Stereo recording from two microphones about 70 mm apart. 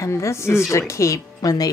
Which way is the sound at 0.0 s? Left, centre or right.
Left.